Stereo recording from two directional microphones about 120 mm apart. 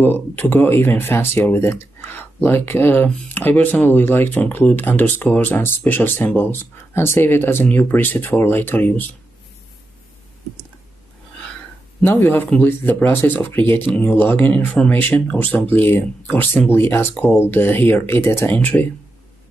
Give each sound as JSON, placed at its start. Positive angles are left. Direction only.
{"t": 0.0, "sound": "speech", "side_deg": 15}
{"t": 12.0, "sound": "speech", "side_deg": 15}